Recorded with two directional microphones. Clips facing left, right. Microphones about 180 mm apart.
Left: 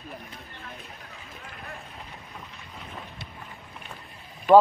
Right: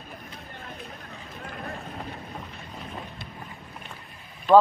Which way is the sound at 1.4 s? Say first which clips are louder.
Right 7 dB; 40° right (ahead or behind).